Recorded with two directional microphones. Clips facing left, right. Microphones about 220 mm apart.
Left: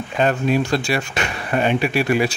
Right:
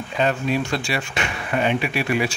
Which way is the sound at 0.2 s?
45° left (ahead or behind).